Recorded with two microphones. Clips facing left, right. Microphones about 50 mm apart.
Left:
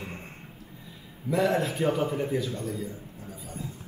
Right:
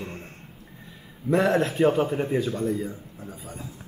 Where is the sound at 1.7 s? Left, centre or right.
Centre; by 3.4 s right.